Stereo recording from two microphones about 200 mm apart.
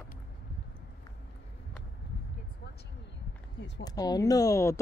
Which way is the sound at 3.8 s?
20° left (ahead or behind).